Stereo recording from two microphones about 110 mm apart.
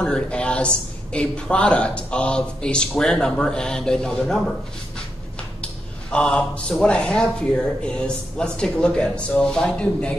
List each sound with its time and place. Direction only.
0.0 s a sound: 10° left (ahead or behind)
1.1 s speech: 10° left (ahead or behind)
6.1 s speech: 10° left (ahead or behind)